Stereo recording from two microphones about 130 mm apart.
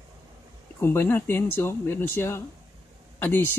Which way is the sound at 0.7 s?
20° left (ahead or behind).